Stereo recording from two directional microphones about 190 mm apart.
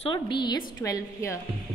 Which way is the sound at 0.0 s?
25° left (ahead or behind).